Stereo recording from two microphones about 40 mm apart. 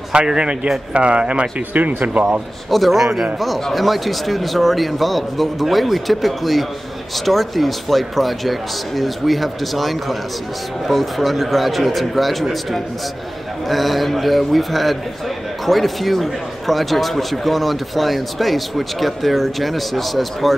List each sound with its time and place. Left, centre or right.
0.1 s speech: right
1.7 s speech: right
2.7 s speech: centre
13.7 s speech: centre